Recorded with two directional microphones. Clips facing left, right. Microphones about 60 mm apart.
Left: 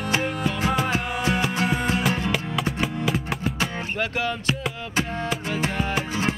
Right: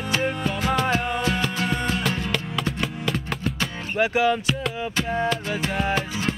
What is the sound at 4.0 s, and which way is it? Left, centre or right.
Speech, centre.